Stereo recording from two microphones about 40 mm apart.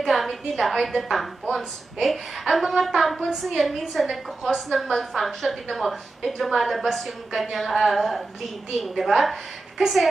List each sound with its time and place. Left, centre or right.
0.0 s a woman's voice: centre